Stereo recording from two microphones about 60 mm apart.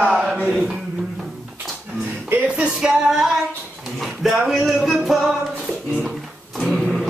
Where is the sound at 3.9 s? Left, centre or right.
Centre.